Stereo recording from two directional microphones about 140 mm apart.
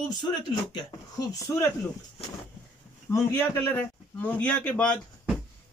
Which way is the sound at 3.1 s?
20° left (ahead or behind).